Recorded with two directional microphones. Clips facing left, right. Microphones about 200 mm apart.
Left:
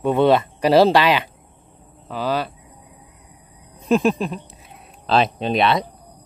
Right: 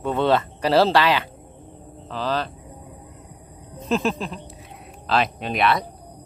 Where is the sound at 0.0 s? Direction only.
15° left (ahead or behind).